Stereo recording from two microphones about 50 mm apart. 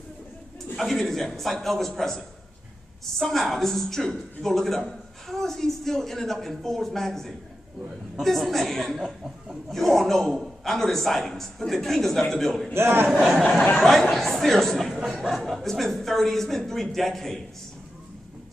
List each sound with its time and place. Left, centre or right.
0.7 s a man's voice: centre
9.0 s speech: centre
9.7 s a man's voice: centre
12.7 s a man's voice: right
13.7 s a man's voice: centre
15.0 s speech: centre